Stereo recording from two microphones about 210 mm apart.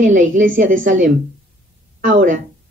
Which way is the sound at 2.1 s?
40° right (ahead or behind).